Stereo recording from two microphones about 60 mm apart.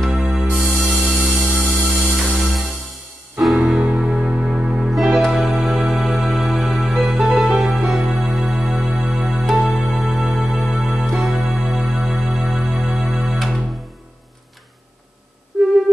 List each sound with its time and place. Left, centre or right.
0.4 s music: centre
7.7 s music: centre
15.5 s busy signal: centre